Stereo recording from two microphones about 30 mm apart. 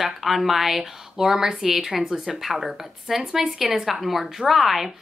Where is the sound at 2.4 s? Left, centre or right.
Centre.